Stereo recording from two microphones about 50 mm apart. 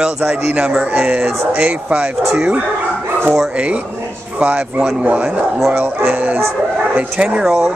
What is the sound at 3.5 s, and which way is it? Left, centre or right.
Speech, right.